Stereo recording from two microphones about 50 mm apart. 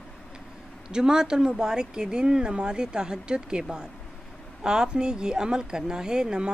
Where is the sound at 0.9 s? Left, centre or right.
Centre.